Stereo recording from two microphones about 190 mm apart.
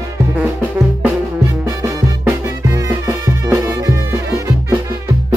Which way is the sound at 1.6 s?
15° right (ahead or behind).